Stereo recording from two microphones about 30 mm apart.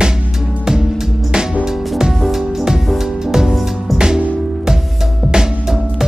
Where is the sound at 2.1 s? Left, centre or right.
Centre.